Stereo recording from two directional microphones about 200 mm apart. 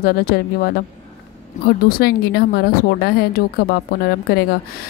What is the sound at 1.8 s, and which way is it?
A woman's voice, 50° left (ahead or behind).